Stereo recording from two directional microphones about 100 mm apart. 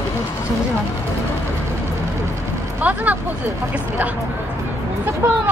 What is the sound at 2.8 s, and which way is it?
Vehicle, 15° right (ahead or behind).